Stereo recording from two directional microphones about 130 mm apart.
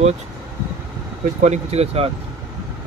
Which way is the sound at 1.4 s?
60° right (ahead or behind).